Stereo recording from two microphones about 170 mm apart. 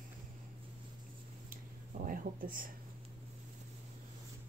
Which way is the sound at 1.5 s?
55° right (ahead or behind).